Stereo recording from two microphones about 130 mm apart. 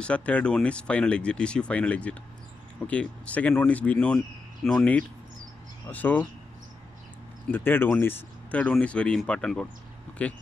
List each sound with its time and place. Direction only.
0.0 s speech: 10° left (ahead or behind)
7.4 s speech: 15° left (ahead or behind)